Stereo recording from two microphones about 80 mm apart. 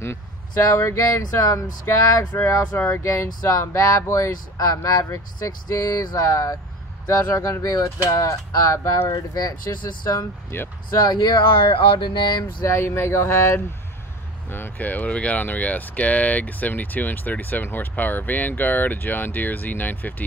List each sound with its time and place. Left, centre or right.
0.0 s speech: left
10.5 s speech: left
11.0 s speech: left
12.6 s speech: left
14.5 s speech: left